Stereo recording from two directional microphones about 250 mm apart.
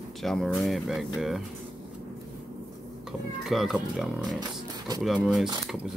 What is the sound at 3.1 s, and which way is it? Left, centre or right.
Speech, centre.